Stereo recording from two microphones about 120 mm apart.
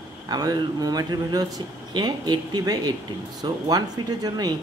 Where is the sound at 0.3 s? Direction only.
35° right (ahead or behind).